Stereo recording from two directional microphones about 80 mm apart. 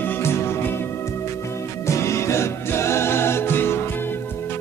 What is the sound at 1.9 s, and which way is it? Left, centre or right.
Music, left.